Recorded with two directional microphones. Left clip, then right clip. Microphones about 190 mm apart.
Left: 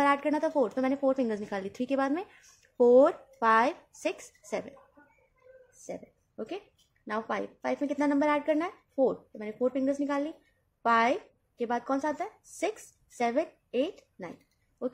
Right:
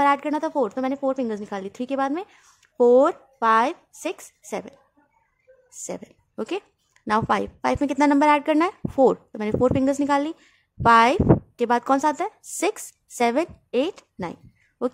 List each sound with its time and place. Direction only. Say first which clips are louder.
0.0 s a woman's voice: right 6 dB; 20° right (ahead or behind)
5.9 s a woman's voice: right 6 dB; 40° right (ahead or behind)